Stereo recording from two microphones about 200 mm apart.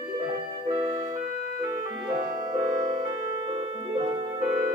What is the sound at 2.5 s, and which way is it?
Music, 25° right (ahead or behind).